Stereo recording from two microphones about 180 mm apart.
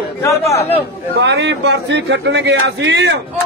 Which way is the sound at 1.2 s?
75° right (ahead or behind).